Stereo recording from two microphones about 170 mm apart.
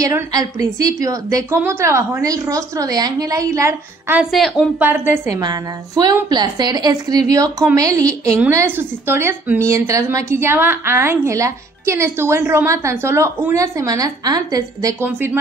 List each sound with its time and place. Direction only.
0.0 s a woman's voice: 20° right (ahead or behind)
4.2 s speech: centre (ahead or behind)
4.7 s a woman's voice: 10° right (ahead or behind)